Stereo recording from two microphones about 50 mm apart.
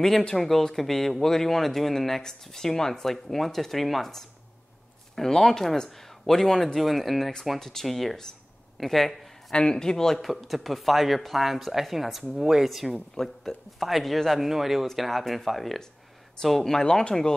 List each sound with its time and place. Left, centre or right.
0.2 s speech: centre
9.5 s speech: centre
10.2 s speech: centre